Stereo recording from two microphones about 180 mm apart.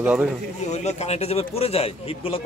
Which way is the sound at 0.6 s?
40° left (ahead or behind).